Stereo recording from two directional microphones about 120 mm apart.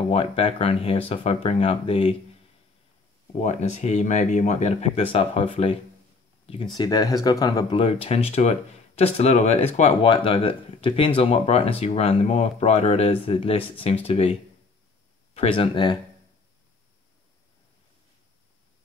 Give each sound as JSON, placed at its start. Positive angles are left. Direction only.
{"t": 0.1, "sound": "speech", "side_deg": 50}
{"t": 3.3, "sound": "speech", "side_deg": 75}
{"t": 6.6, "sound": "speech", "side_deg": 35}
{"t": 7.7, "sound": "speech", "side_deg": 55}
{"t": 10.0, "sound": "speech", "side_deg": 50}
{"t": 15.3, "sound": "speech", "side_deg": 55}